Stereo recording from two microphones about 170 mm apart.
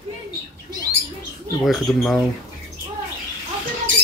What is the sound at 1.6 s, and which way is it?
Speech, centre (ahead or behind).